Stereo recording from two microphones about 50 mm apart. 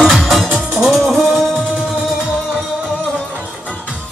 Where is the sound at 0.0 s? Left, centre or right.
Centre.